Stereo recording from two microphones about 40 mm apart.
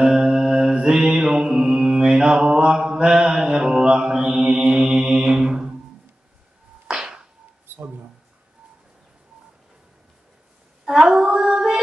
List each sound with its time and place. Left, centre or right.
0.0 s mantra: centre
6.9 s a sound: centre
10.9 s female singing: centre